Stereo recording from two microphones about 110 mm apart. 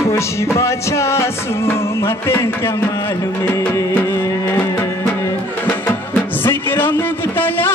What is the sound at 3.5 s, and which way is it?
Music, 25° left (ahead or behind).